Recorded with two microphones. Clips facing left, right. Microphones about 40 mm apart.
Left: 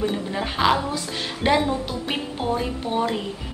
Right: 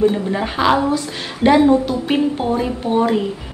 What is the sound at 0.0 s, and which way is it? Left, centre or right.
A woman's voice, centre.